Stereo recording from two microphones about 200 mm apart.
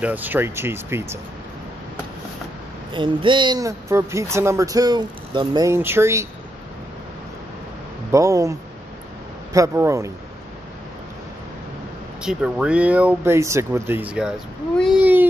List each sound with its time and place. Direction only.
0.0 s speech: 10° right (ahead or behind)
2.9 s speech: 25° right (ahead or behind)
8.1 s speech: 15° right (ahead or behind)
12.2 s speech: 5° right (ahead or behind)
15.0 s a sound: 10° right (ahead or behind)